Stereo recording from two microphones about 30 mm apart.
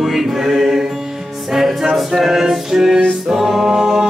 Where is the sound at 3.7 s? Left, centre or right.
Right.